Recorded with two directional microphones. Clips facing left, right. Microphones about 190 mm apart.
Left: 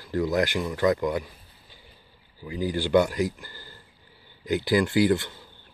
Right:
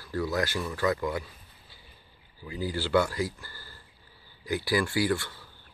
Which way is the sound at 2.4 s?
15° left (ahead or behind).